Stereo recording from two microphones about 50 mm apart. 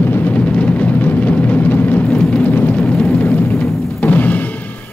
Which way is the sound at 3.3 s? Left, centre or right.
Left.